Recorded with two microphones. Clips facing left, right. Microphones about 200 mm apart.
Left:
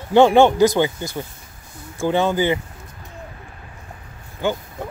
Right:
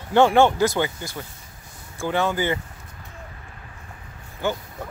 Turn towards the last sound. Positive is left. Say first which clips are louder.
# left 3 dB
turn(degrees=15)  # may be behind; listen again after turning